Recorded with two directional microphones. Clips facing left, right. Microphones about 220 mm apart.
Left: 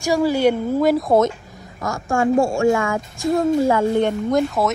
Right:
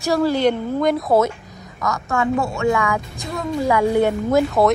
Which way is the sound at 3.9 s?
5° right (ahead or behind).